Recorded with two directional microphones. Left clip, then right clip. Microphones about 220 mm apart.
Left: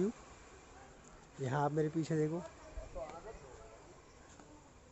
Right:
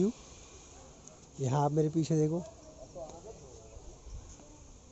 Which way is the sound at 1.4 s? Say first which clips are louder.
Right 5 dB; 15° right (ahead or behind).